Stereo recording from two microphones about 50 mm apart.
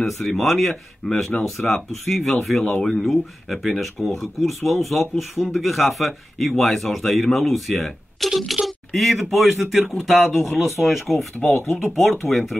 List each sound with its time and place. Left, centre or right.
0.0 s speech: centre
11.5 s speech: left
11.9 s speech: centre